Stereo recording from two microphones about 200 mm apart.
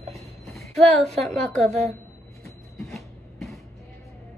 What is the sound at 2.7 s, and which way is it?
Music, centre (ahead or behind).